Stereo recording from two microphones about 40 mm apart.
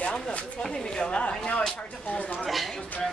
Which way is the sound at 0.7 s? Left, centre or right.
Centre.